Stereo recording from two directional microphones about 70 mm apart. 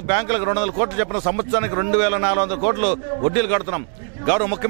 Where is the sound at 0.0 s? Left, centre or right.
Centre.